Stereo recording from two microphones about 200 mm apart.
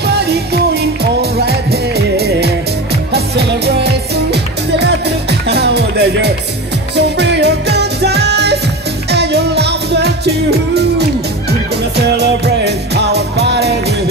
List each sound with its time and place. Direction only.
0.0 s music: 55° right (ahead or behind)
1.4 s music: 55° right (ahead or behind)